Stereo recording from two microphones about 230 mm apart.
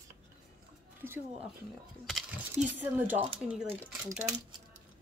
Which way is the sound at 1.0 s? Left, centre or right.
Centre.